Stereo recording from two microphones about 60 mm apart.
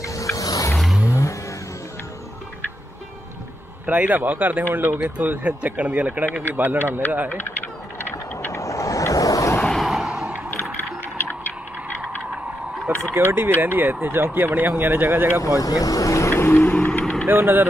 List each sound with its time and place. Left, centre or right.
0.0 s music: left
3.8 s speech: right
4.9 s speech: right
8.5 s vehicle: left
9.8 s a sound: centre
12.8 s speech: right
15.4 s speech: left
16.3 s music: left
17.3 s speech: right